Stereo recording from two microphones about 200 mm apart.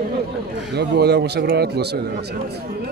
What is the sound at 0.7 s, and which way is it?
Speech, 55° right (ahead or behind).